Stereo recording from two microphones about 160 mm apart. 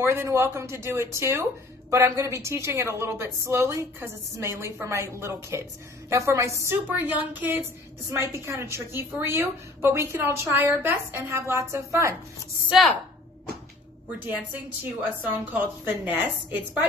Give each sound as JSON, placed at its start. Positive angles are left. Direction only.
{"t": 0.0, "sound": "a woman's voice", "side_deg": -15}
{"t": 12.6, "sound": "a woman's voice", "side_deg": 0}
{"t": 15.4, "sound": "a woman's voice", "side_deg": -10}